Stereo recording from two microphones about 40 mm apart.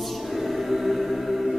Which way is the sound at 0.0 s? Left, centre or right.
Centre.